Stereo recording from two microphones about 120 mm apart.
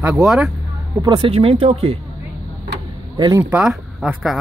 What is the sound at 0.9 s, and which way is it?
Speech, 40° right (ahead or behind).